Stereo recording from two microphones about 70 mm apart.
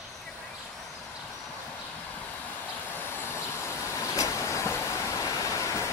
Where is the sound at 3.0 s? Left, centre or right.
Left.